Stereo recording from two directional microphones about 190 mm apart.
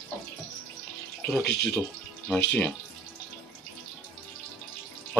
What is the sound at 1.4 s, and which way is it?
Speech, 60° left (ahead or behind).